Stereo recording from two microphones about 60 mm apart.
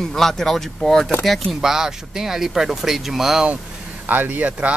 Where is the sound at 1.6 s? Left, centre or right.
Centre.